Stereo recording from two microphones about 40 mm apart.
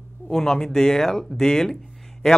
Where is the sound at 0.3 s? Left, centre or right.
Centre.